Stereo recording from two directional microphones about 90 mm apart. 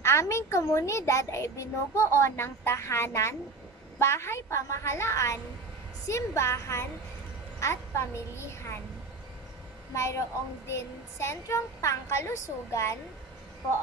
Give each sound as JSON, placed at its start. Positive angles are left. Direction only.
{"t": 0.0, "sound": "a child's voice", "side_deg": 30}
{"t": 9.9, "sound": "a child's voice", "side_deg": 35}